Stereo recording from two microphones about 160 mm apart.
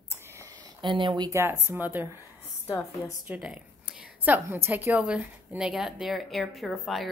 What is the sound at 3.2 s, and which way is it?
A woman's voice, 10° right (ahead or behind).